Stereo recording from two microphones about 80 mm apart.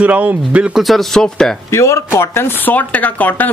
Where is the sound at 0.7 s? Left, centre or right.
Centre.